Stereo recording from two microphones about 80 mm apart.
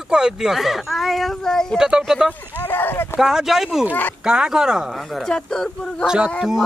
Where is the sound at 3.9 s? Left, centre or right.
Left.